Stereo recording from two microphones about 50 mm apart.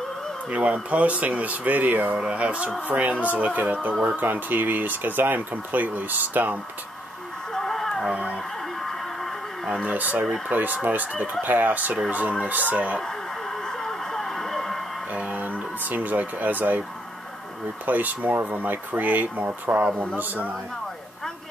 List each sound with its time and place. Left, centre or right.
0.5 s speech: right
7.5 s a sound: centre
8.1 s speech: centre
9.8 s speech: right
13.7 s radio: centre
15.1 s speech: right
17.8 s speech: right